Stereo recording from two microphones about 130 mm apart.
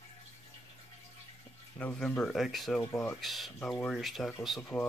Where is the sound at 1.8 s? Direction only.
10° left (ahead or behind).